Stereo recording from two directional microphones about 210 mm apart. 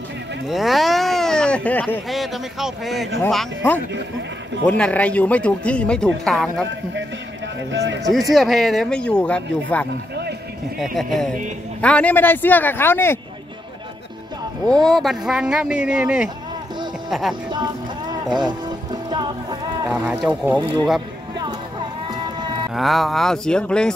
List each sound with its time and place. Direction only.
0.5 s speech: centre (ahead or behind)
7.7 s speech: 60° right (ahead or behind)
8.1 s speech: centre (ahead or behind)
11.0 s speech: centre (ahead or behind)
14.7 s speech: centre (ahead or behind)
17.5 s music: 20° right (ahead or behind)
19.9 s speech: 5° right (ahead or behind)
20.5 s speech: 25° right (ahead or behind)
21.4 s a sound: 20° right (ahead or behind)
22.8 s speech: centre (ahead or behind)